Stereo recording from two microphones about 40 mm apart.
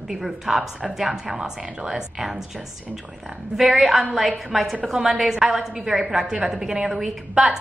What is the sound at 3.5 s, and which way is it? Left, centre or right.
A woman's voice, centre.